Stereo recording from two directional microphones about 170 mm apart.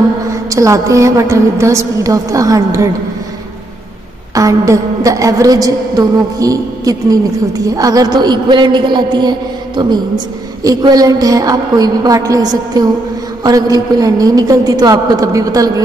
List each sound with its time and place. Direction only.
0.3 s a woman's voice: 20° right (ahead or behind)
4.4 s a woman's voice: 20° right (ahead or behind)